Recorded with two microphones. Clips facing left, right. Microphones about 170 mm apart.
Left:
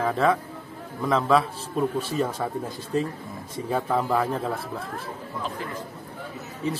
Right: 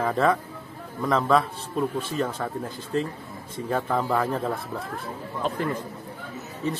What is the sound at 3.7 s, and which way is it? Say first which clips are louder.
Speech: left 1 dB; 10° left (ahead or behind).